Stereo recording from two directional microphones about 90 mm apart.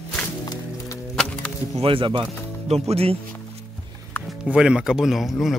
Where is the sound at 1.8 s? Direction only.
80° right.